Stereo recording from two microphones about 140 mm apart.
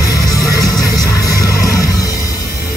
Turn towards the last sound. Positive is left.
turn(degrees=25)  # may be behind; listen again after turning